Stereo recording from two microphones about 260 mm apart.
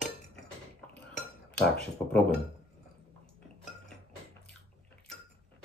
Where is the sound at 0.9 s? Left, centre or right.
Centre.